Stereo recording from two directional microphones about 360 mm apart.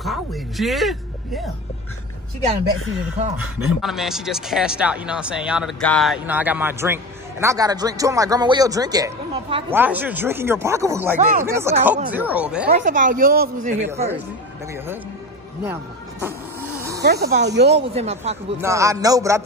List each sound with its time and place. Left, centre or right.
0.0 s speech: centre
3.3 s a man's voice: centre
12.6 s speech: right
15.6 s speech: centre
17.0 s speech: right
17.9 s a man's voice: centre